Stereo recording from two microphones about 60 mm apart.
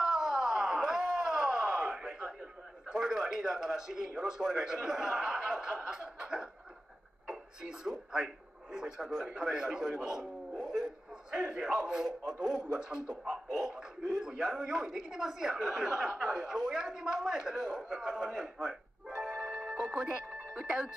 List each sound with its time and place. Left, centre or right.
0.0 s a sound: centre
2.9 s a man's voice: centre
7.8 s a woman's voice: centre
10.8 s a sound: centre
14.1 s a woman's voice: centre
19.0 s music: centre